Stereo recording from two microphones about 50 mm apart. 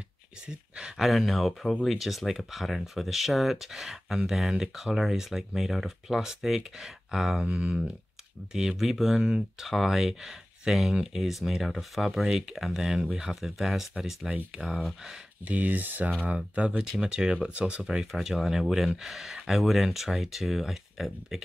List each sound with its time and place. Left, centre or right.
0.5 s speech: centre
0.9 s speech: centre
7.4 s speech: centre
15.4 s speech: right
16.2 s speech: right
16.9 s speech: centre
17.8 s speech: centre